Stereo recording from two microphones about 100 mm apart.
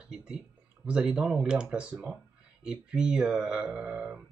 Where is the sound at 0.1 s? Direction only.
10° right (ahead or behind).